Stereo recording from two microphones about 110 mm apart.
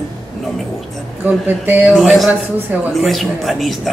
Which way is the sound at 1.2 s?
15° right (ahead or behind).